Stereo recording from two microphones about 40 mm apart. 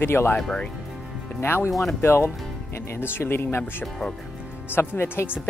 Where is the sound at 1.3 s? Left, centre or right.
Left.